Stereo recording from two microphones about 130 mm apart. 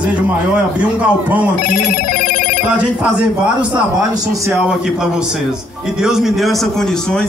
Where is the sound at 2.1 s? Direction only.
90° left.